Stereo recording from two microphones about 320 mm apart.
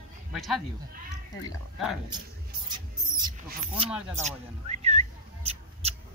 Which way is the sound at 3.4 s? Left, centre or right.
Centre.